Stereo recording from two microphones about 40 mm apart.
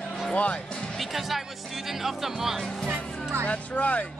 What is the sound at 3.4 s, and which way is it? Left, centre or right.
Speech, left.